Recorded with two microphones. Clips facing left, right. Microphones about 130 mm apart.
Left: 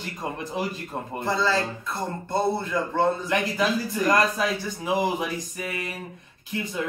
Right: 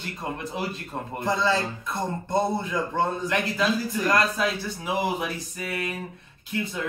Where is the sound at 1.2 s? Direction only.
20° right (ahead or behind).